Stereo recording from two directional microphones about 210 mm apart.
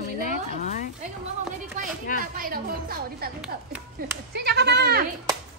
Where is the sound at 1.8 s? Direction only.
35° right (ahead or behind).